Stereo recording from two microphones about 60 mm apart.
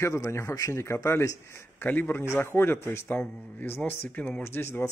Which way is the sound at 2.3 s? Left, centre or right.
Left.